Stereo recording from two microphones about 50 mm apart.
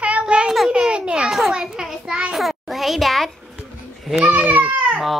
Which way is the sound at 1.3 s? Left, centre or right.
Centre.